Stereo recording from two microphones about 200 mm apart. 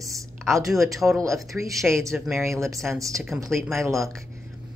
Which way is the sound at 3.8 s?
15° right (ahead or behind).